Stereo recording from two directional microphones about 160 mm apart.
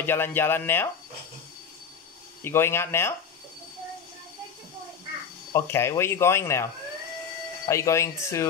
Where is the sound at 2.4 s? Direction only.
15° left (ahead or behind).